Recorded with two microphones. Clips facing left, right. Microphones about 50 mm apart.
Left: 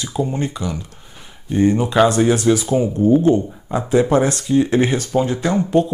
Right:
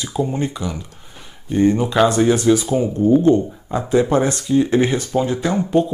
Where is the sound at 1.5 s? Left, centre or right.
Centre.